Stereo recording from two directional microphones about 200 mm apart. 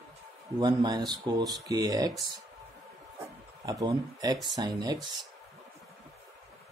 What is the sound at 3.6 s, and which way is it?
Speech, 20° right (ahead or behind).